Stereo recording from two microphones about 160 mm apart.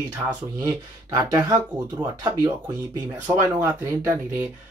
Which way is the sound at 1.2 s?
25° right (ahead or behind).